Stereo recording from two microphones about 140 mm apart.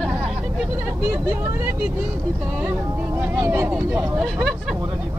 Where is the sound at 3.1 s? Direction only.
15° right (ahead or behind).